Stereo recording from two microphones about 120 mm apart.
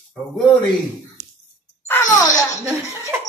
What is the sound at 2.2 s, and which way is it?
Speech, 30° left (ahead or behind).